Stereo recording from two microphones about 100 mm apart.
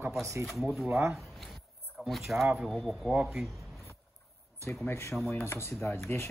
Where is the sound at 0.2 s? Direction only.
30° right (ahead or behind).